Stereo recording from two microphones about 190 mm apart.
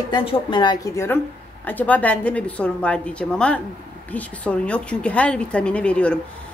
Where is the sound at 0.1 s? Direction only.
25° left (ahead or behind).